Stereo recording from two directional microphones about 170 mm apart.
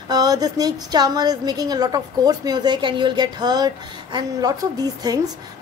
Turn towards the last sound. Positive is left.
turn(degrees=-20)  # may be behind; listen again after turning